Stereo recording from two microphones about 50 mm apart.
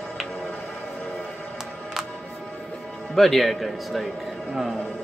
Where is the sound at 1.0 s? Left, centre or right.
Centre.